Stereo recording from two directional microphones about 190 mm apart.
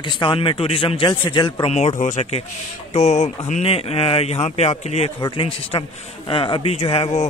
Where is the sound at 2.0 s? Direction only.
40° left (ahead or behind).